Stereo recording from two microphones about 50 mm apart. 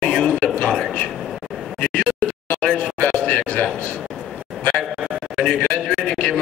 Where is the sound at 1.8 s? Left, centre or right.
Centre.